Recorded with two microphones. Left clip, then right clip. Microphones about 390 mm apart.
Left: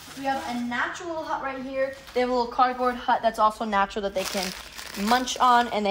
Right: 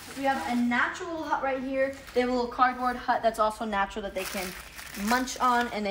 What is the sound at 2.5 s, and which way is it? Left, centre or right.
A woman's voice, left.